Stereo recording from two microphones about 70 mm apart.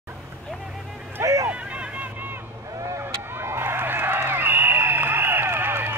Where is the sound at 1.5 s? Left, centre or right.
Centre.